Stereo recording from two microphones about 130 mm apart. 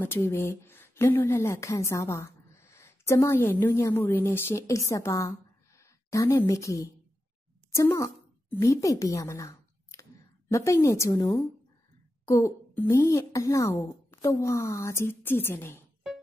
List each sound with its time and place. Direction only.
0.0 s a woman's voice: 20° left (ahead or behind)